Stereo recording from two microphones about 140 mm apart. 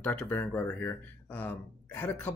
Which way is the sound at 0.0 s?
10° left (ahead or behind).